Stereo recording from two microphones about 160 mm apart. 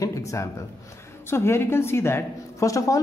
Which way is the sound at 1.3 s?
15° left (ahead or behind).